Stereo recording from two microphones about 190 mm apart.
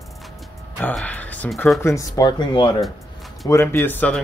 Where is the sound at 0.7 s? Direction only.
10° left (ahead or behind).